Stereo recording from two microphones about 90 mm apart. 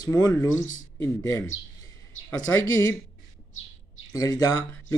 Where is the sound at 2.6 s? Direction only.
40° left (ahead or behind).